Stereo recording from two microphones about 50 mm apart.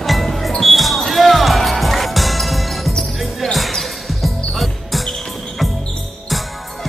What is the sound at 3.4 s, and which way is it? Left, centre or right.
Basketball bounce, centre.